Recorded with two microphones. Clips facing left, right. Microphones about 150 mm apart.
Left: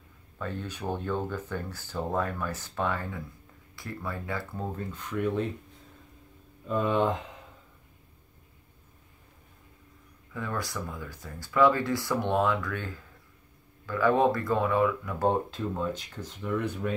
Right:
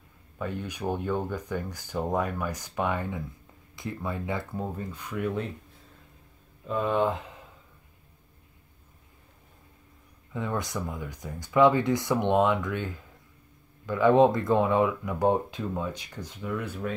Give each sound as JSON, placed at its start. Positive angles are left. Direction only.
{"t": 0.4, "sound": "speech", "side_deg": -15}
{"t": 4.6, "sound": "speech", "side_deg": -10}
{"t": 6.7, "sound": "speech", "side_deg": 0}
{"t": 10.3, "sound": "speech", "side_deg": -20}